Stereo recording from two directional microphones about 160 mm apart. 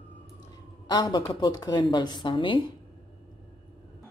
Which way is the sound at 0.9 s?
25° left (ahead or behind).